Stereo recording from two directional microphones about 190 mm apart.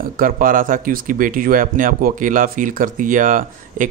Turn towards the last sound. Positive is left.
turn(degrees=-45)  # may be behind; listen again after turning